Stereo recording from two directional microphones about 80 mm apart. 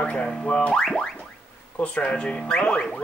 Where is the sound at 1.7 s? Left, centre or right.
Centre.